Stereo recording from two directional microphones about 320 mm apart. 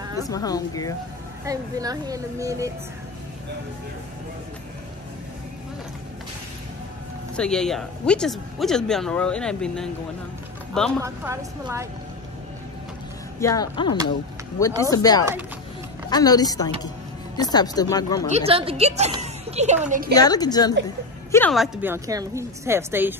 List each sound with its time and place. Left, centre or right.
0.3 s a woman's voice: centre
1.4 s speech: centre
7.3 s speech: centre
11.0 s speech: centre
13.4 s a woman's voice: centre
18.3 s a woman's voice: centre
20.2 s a woman's voice: centre